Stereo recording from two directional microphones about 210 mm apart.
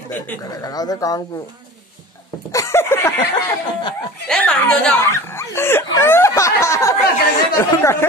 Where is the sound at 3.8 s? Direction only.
20° left (ahead or behind).